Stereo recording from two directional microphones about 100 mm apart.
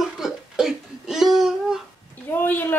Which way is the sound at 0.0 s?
5° right (ahead or behind).